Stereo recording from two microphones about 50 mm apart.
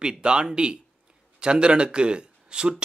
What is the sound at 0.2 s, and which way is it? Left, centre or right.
Speech, centre.